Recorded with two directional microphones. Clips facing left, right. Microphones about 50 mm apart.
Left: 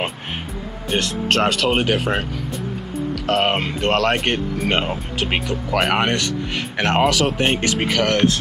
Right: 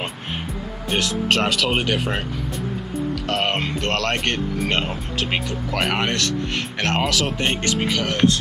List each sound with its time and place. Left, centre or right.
0.8 s speech: centre
7.9 s speech: left